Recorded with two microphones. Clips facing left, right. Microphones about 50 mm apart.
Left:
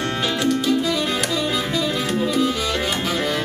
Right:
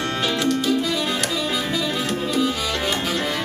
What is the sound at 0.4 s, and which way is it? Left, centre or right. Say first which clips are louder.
Music: left 2 dB; centre.